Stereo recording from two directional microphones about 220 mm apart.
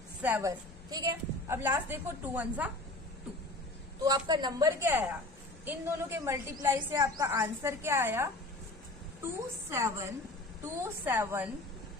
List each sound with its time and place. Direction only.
0.2 s a woman's voice: 10° right (ahead or behind)
4.0 s a woman's voice: 20° right (ahead or behind)